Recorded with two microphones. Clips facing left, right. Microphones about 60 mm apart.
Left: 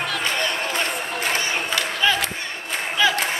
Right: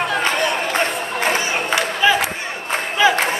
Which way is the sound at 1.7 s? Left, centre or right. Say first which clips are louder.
Right 6 dB; centre.